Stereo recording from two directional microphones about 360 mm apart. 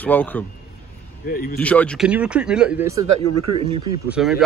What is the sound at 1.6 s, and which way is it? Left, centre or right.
Speech, centre.